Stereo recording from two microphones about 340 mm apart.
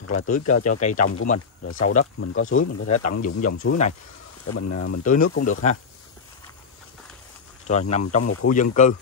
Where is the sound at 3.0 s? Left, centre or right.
Left.